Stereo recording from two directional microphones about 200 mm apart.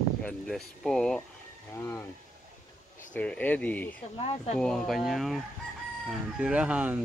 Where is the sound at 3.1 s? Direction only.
5° left (ahead or behind).